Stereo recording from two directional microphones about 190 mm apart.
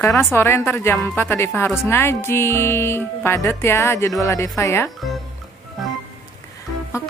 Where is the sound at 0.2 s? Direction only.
10° left (ahead or behind).